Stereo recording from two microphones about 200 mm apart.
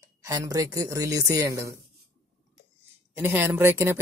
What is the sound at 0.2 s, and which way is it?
A man's voice, 15° right (ahead or behind).